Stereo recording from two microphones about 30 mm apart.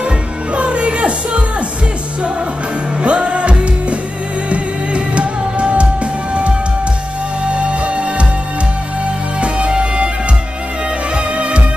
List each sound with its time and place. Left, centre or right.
0.6 s music: right
3.0 s music: right
7.4 s music: right
9.4 s music: right
11.1 s music: right